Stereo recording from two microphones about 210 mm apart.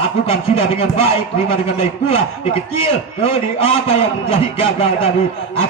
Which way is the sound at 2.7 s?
25° left (ahead or behind).